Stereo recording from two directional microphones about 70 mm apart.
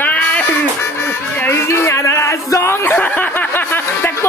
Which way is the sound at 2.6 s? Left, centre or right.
Left.